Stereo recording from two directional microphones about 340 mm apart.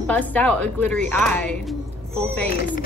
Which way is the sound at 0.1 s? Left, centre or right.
Centre.